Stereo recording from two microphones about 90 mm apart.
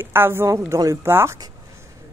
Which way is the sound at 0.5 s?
40° right (ahead or behind).